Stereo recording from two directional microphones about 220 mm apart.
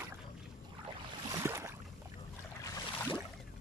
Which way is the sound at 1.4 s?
10° right (ahead or behind).